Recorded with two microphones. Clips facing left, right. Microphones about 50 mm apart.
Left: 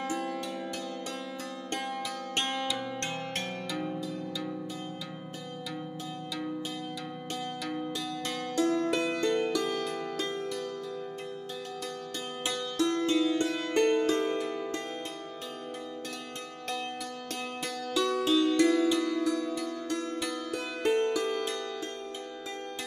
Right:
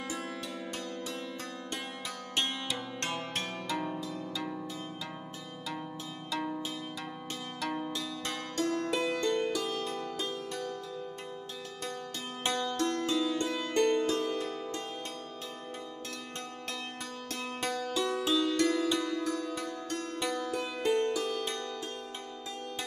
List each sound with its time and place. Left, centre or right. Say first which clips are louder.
2.3 s music: left 2 dB; left
3.3 s music: even; right
8.5 s music: left 4 dB; left
9.5 s music: left 3 dB; left
12.4 s music: right 1 dB; right
12.8 s music: left 6 dB; left
17.9 s music: left 6 dB; left
18.6 s music: left 4 dB; left
20.5 s music: left 3 dB; left